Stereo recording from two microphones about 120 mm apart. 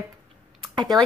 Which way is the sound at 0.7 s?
35° right (ahead or behind).